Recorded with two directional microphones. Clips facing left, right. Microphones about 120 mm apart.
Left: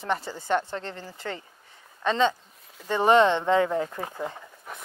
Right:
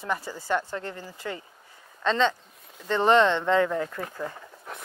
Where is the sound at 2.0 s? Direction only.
15° left (ahead or behind).